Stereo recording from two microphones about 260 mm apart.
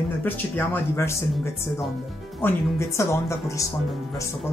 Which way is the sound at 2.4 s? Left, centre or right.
Centre.